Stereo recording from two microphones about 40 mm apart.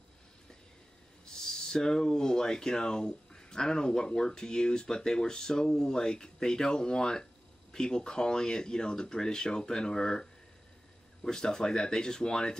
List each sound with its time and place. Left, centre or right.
1.2 s speech: centre
11.2 s speech: centre